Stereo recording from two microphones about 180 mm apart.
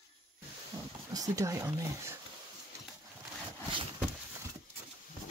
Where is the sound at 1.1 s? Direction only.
20° right (ahead or behind).